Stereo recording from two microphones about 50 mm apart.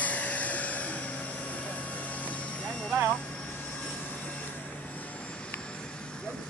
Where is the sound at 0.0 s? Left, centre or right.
Left.